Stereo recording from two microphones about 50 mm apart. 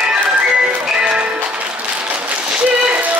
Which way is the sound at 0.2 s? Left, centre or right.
Right.